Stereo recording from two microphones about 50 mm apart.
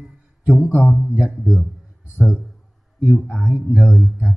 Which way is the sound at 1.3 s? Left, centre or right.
Centre.